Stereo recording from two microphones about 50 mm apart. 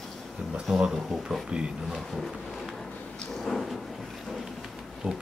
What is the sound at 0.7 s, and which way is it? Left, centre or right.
Speech, centre.